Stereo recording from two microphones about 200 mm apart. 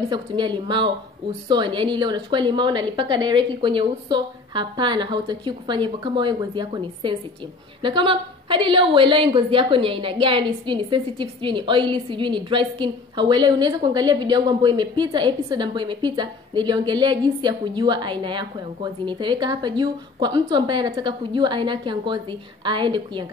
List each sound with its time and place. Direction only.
0.1 s a woman's voice: 25° right (ahead or behind)